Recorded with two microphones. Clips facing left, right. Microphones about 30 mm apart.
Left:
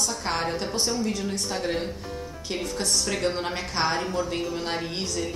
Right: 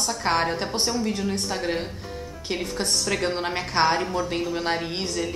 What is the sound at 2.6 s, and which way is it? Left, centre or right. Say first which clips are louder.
Speech: even; right.